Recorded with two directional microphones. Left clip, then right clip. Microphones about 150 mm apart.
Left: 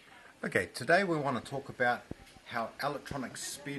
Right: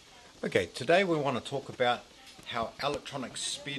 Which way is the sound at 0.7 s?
35° right (ahead or behind).